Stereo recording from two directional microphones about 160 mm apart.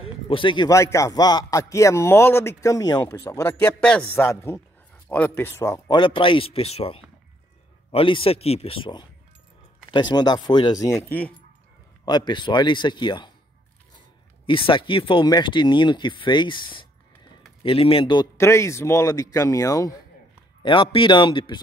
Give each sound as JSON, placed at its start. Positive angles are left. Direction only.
{"t": 0.0, "sound": "a sound", "side_deg": 35}
{"t": 0.7, "sound": "a man's voice", "side_deg": 20}
{"t": 11.1, "sound": "speech", "side_deg": 10}
{"t": 12.0, "sound": "a man's voice", "side_deg": 25}
{"t": 14.4, "sound": "a man's voice", "side_deg": 35}
{"t": 18.4, "sound": "a man's voice", "side_deg": 15}